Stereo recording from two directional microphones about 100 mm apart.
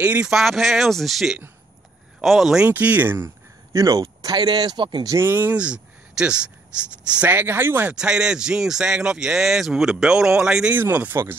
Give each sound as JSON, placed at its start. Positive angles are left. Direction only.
{"t": 0.0, "sound": "speech", "side_deg": -15}
{"t": 0.3, "sound": "speech", "side_deg": 0}
{"t": 2.6, "sound": "speech", "side_deg": -15}
{"t": 3.7, "sound": "a man's voice", "side_deg": -35}
{"t": 5.2, "sound": "speech", "side_deg": -20}
{"t": 7.2, "sound": "speech", "side_deg": -20}
{"t": 7.9, "sound": "speech", "side_deg": -10}
{"t": 10.7, "sound": "speech", "side_deg": -15}